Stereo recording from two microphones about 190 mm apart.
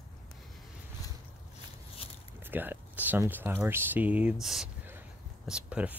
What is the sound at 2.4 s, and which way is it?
Speech, 10° right (ahead or behind).